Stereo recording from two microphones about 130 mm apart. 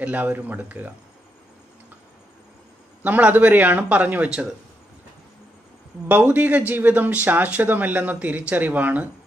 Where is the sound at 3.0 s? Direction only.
10° right (ahead or behind).